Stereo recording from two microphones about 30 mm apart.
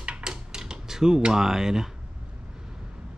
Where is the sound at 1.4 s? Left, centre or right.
Centre.